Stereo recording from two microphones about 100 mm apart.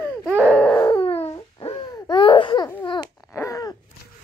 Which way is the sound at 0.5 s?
10° left (ahead or behind).